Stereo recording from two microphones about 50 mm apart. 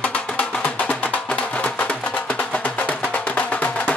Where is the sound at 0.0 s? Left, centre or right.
Left.